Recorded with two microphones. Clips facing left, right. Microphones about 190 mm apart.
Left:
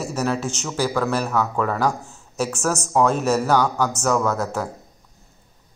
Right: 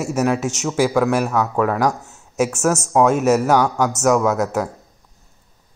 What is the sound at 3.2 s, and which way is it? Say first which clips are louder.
Speech: right 4 dB; 20° right (ahead or behind).